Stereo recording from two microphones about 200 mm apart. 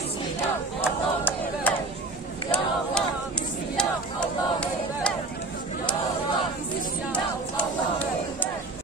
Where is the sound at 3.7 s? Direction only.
5° left (ahead or behind).